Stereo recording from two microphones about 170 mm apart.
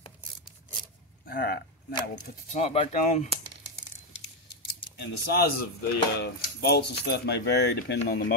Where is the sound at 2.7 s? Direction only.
40° left (ahead or behind).